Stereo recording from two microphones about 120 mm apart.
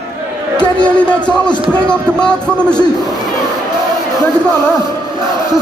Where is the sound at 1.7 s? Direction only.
5° left (ahead or behind).